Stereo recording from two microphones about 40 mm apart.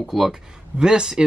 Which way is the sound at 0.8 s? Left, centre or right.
Centre.